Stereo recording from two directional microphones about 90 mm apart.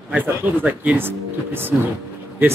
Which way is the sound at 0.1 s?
20° right (ahead or behind).